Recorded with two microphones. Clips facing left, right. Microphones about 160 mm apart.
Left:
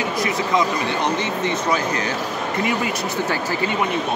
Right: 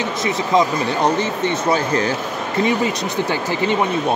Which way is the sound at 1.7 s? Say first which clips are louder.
Right 4 dB; 30° right (ahead or behind).